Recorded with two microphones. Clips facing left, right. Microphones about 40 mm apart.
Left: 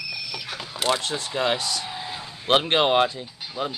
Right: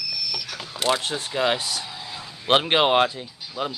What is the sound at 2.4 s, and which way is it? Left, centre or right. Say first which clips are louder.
Speech: right 1 dB; centre.